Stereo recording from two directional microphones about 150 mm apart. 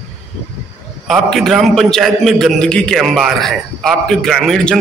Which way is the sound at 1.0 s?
Centre (ahead or behind).